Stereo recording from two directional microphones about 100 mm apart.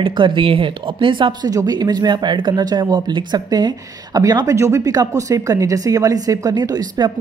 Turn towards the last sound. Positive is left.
turn(degrees=-45)  # may be behind; listen again after turning